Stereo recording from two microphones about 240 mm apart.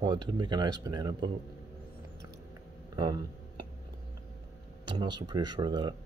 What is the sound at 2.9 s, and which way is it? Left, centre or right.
Speech, centre.